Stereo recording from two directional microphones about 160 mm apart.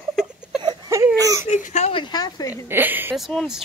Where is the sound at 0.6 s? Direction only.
20° right (ahead or behind).